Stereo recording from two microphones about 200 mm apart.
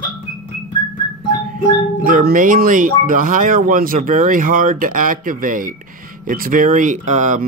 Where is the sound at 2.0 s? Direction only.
45° right (ahead or behind).